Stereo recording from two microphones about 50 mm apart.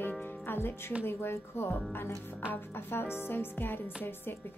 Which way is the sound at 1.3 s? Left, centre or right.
Left.